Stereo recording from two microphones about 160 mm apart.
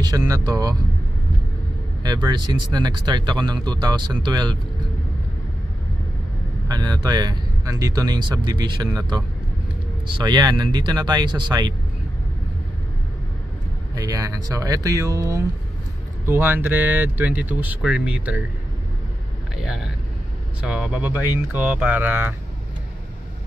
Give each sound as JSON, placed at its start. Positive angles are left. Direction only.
{"t": 0.0, "sound": "speech", "side_deg": -25}
{"t": 2.0, "sound": "speech", "side_deg": -25}
{"t": 6.7, "sound": "speech", "side_deg": -25}
{"t": 13.9, "sound": "speech", "side_deg": -20}
{"t": 19.5, "sound": "speech", "side_deg": 0}